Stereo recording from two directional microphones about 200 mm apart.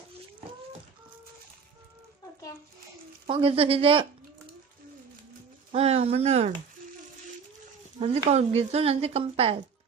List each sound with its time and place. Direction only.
3.3 s speech: 25° right (ahead or behind)
5.7 s speech: 30° right (ahead or behind)
8.3 s speech: 30° right (ahead or behind)